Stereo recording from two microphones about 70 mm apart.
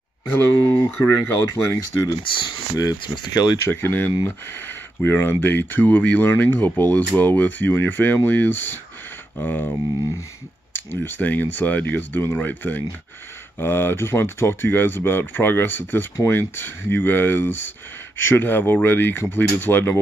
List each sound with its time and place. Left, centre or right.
0.9 s speech: left
1.5 s speech: left
2.0 s speech: left
3.6 s speech: left